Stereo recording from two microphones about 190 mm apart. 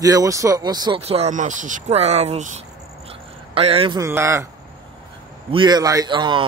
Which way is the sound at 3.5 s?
30° right (ahead or behind).